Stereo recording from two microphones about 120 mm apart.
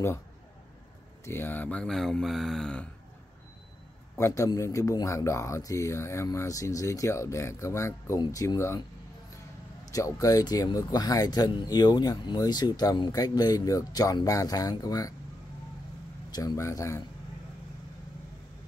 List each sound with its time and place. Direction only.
1.2 s speech: 20° left (ahead or behind)
4.2 s speech: 25° left (ahead or behind)
9.8 s speech: 30° left (ahead or behind)
16.3 s speech: 30° left (ahead or behind)